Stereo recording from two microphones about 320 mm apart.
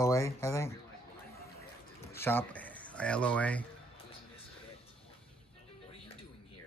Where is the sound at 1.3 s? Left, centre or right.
Left.